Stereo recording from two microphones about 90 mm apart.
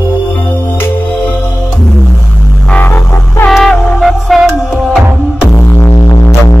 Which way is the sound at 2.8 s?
30° left (ahead or behind).